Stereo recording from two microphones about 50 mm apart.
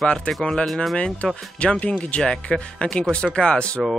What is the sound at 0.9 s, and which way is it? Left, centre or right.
Speech, left.